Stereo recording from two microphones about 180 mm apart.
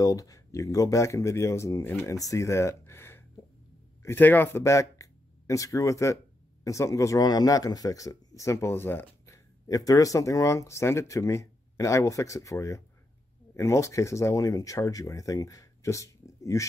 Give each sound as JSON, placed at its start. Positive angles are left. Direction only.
{"t": 0.0, "sound": "speech", "side_deg": 20}